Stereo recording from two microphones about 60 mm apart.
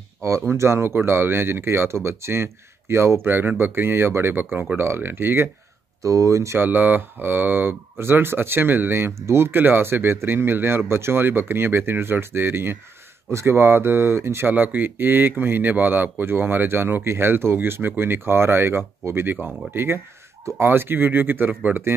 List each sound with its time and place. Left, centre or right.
0.5 s speech: right
6.0 s speech: right
6.6 s speech: right
9.5 s speech: right
14.5 s speech: right